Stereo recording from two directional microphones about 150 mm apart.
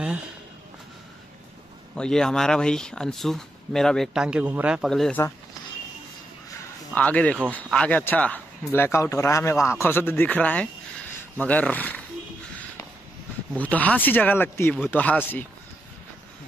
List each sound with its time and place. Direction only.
2.0 s speech: 5° left (ahead or behind)
6.9 s speech: 10° left (ahead or behind)
13.5 s speech: 10° left (ahead or behind)